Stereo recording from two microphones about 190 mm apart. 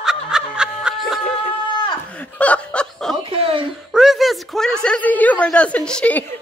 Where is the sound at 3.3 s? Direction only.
30° right (ahead or behind).